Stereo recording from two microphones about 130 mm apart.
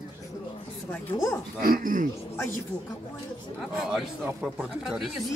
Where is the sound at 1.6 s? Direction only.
90° right.